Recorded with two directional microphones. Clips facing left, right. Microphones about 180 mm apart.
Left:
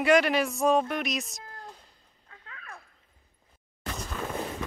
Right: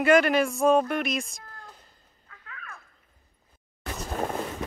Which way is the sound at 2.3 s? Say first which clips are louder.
Right 1 dB; 30° left (ahead or behind).